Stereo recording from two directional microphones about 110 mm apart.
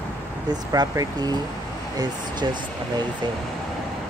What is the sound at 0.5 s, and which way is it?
Speech, 35° right (ahead or behind).